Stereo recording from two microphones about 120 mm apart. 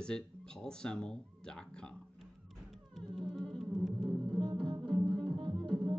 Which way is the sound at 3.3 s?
5° left (ahead or behind).